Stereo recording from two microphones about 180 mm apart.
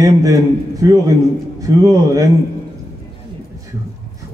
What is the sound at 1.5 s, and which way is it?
Speech, 20° right (ahead or behind).